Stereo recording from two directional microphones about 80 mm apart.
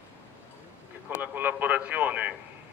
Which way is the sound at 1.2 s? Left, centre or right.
Right.